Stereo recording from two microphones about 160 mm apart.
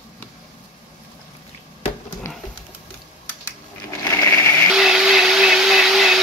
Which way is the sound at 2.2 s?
20° left (ahead or behind).